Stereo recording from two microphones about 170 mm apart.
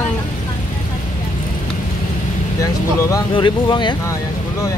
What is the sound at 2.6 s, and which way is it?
Speech, 25° left (ahead or behind).